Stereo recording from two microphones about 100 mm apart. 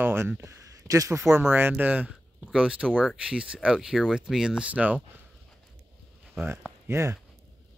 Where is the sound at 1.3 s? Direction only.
20° right (ahead or behind).